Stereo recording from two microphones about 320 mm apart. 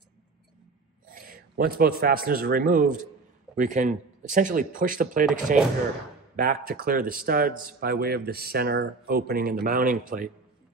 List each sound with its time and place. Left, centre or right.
1.0 s a man's voice: right